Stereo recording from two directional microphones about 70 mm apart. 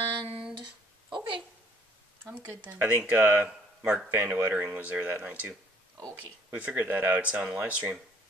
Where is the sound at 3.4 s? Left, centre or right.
Centre.